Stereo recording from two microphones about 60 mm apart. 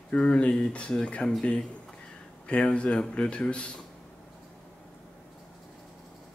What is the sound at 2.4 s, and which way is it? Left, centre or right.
Speech, centre.